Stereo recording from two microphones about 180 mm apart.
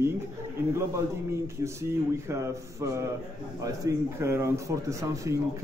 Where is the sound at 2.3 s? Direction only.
15° right (ahead or behind).